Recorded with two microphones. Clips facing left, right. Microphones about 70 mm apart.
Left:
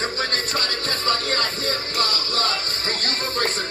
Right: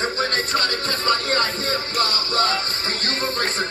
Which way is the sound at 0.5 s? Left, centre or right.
Right.